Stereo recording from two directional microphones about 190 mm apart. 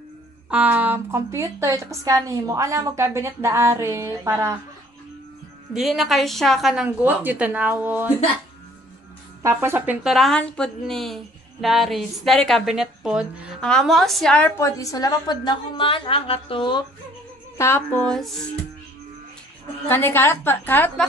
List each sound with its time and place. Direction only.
0.5 s a woman's voice: 10° right (ahead or behind)
5.7 s a woman's voice: centre (ahead or behind)
9.4 s a woman's voice: 15° right (ahead or behind); by 14.5 s 5° left (ahead or behind)
14.6 s a woman's voice: 15° left (ahead or behind)
17.6 s a woman's voice: 15° left (ahead or behind)
18.1 s a woman's voice: centre (ahead or behind)
19.9 s a woman's voice: 10° left (ahead or behind)